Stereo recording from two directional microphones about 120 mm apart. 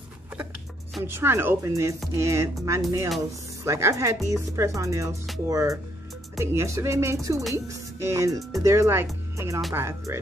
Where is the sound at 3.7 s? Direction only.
25° right (ahead or behind).